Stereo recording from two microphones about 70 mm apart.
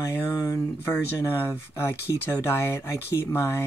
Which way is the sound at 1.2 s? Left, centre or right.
Left.